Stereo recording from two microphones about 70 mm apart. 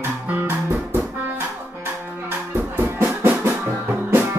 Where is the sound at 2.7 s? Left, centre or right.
Right.